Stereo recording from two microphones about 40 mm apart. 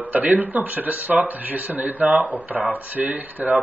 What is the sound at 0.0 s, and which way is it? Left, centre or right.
Speech, right.